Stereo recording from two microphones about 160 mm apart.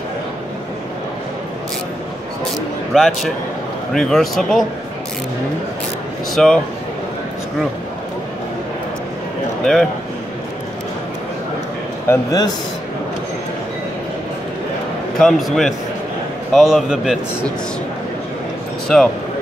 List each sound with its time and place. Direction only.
2.9 s a man's voice: centre (ahead or behind)
6.3 s a man's voice: 5° left (ahead or behind)
12.1 s a man's voice: 20° left (ahead or behind)
15.1 s a man's voice: centre (ahead or behind)
18.9 s a man's voice: 5° left (ahead or behind)